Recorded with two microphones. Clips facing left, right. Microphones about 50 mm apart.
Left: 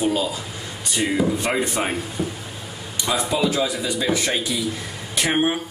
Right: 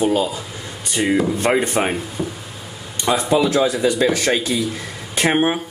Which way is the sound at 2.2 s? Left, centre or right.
Centre.